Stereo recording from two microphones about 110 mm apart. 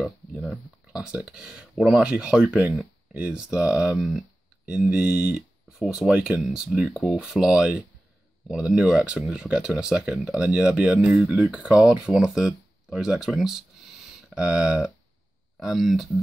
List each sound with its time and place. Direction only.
0.0 s speech: 5° right (ahead or behind)